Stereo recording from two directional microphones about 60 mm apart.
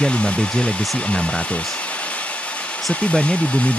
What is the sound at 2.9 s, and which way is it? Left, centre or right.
Speech, left.